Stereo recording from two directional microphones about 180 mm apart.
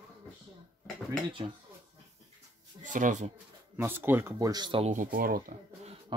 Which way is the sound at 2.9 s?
45° right (ahead or behind).